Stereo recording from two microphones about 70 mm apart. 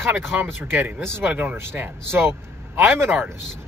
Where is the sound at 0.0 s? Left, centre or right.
Right.